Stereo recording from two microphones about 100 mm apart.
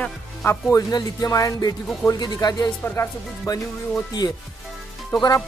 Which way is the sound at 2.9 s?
30° left (ahead or behind).